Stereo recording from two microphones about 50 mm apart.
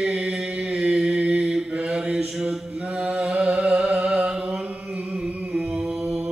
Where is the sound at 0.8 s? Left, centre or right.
Centre.